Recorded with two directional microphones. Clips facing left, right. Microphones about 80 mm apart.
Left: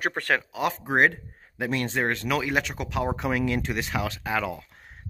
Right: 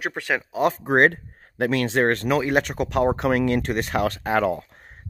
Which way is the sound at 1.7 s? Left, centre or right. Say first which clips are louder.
Right 5 dB; right.